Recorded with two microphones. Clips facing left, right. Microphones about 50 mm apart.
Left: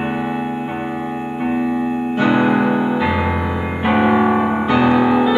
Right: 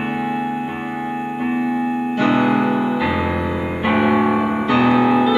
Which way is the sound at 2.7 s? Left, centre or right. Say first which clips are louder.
Left 1 dB; centre.